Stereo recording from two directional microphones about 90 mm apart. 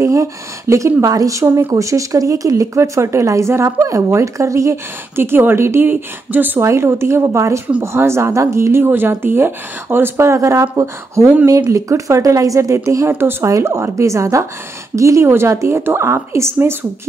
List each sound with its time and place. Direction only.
0.0 s speech: 35° right (ahead or behind); by 6.6 s 20° right (ahead or behind)
6.6 s speech: 30° right (ahead or behind)